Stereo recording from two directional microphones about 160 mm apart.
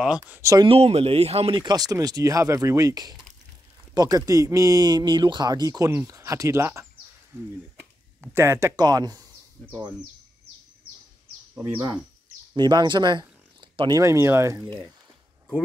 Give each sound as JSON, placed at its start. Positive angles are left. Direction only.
{"t": 0.0, "sound": "speech", "side_deg": -5}
{"t": 0.4, "sound": "speech", "side_deg": -20}
{"t": 0.7, "sound": "speech", "side_deg": -40}
{"t": 8.2, "sound": "speech", "side_deg": -15}
{"t": 12.5, "sound": "speech", "side_deg": -30}